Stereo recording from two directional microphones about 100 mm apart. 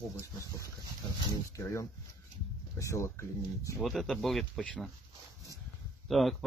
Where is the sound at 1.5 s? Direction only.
30° left (ahead or behind).